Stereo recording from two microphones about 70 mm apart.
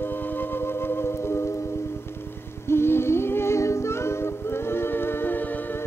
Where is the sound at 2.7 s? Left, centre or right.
Left.